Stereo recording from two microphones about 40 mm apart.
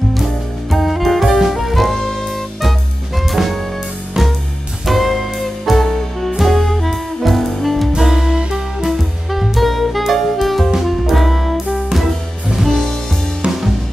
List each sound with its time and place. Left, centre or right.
0.1 s music: centre
4.8 s music: centre
8.1 s music: centre
8.8 s music: centre